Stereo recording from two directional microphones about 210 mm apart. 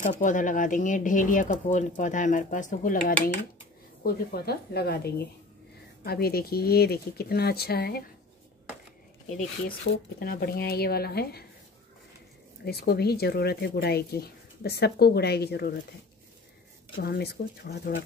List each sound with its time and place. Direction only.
0.2 s speech: 40° left (ahead or behind)
9.4 s speech: 45° left (ahead or behind)
12.6 s speech: 50° left (ahead or behind)
16.9 s speech: 50° left (ahead or behind)